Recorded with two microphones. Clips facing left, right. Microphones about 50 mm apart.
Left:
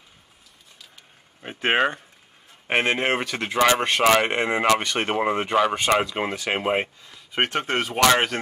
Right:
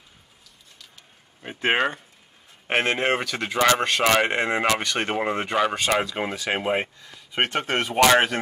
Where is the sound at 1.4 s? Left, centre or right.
Centre.